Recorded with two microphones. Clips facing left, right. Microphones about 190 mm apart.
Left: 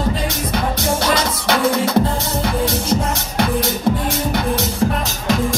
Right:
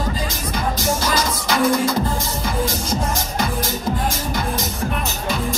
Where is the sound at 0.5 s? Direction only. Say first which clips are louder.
Left 1 dB; 65° left (ahead or behind).